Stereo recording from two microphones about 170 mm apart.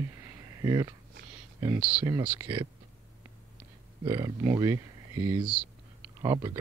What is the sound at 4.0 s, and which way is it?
Speech, 30° right (ahead or behind).